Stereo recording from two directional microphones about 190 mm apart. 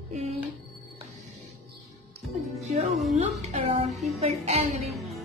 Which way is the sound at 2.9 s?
Centre (ahead or behind).